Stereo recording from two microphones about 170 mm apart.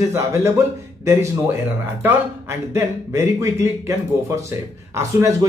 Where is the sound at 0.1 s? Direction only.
15° right (ahead or behind).